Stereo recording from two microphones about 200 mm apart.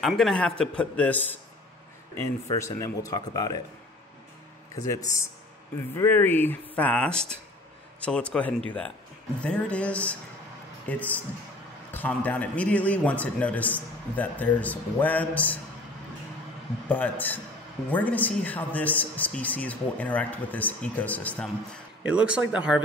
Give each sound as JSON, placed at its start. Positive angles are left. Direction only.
{"t": 0.0, "sound": "a man's voice", "side_deg": 0}
{"t": 2.5, "sound": "a man's voice", "side_deg": 15}
{"t": 4.8, "sound": "a man's voice", "side_deg": 15}
{"t": 16.9, "sound": "a man's voice", "side_deg": 10}
{"t": 22.0, "sound": "speech", "side_deg": -5}